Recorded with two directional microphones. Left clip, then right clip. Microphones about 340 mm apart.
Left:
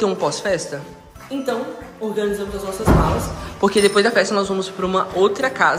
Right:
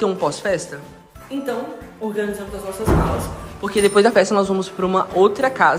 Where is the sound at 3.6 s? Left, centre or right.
Centre.